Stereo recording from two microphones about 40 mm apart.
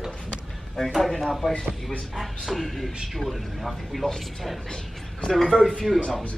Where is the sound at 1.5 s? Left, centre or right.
Left.